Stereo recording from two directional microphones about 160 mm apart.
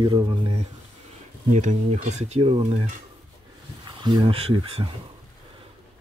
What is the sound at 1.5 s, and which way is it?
Speech, 50° right (ahead or behind).